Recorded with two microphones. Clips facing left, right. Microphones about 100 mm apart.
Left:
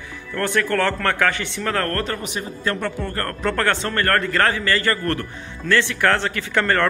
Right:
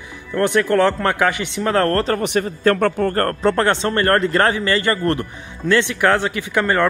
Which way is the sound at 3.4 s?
25° right (ahead or behind).